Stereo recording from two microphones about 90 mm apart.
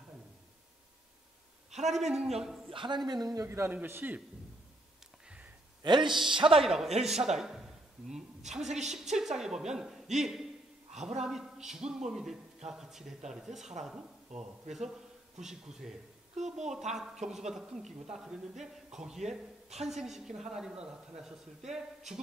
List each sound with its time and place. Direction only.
1.9 s a woman's voice: 5° right (ahead or behind)
2.7 s speech: 65° right (ahead or behind)
3.1 s a man's voice: 45° right (ahead or behind)
3.4 s a man's voice: 25° right (ahead or behind)
5.8 s speech: 55° right (ahead or behind)
6.2 s speech: 65° right (ahead or behind)
6.6 s a woman's voice: 5° right (ahead or behind)
15.4 s a woman's voice: 5° right (ahead or behind)